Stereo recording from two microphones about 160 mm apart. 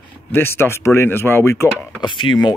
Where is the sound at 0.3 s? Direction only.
15° left (ahead or behind).